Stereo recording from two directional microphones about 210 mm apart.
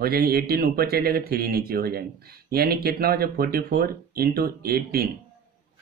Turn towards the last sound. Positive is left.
turn(degrees=-45)  # may be behind; listen again after turning